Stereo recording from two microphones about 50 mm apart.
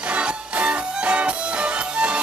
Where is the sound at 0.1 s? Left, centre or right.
Right.